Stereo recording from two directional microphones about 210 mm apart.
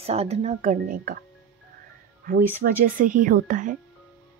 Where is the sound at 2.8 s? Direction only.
40° right (ahead or behind).